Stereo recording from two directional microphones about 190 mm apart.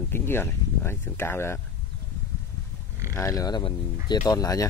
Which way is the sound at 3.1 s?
20° left (ahead or behind).